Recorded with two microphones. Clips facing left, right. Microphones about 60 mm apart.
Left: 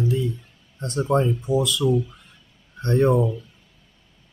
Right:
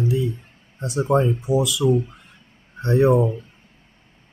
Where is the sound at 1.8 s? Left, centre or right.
Right.